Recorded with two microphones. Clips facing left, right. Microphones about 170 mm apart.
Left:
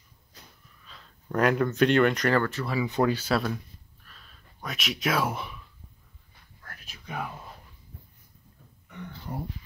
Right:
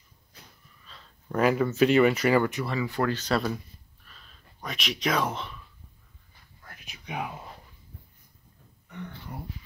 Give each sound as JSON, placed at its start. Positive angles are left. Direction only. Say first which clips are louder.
{"t": 0.8, "sound": "speech", "louder": "left 1 dB", "side_deg": 0}
{"t": 2.8, "sound": "speech", "louder": "left 4 dB", "side_deg": 15}
{"t": 4.0, "sound": "a sound", "louder": "even", "side_deg": 0}
{"t": 7.1, "sound": "speech", "louder": "right 1 dB", "side_deg": -10}